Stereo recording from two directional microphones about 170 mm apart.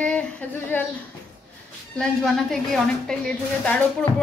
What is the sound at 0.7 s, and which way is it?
Speech, 10° left (ahead or behind).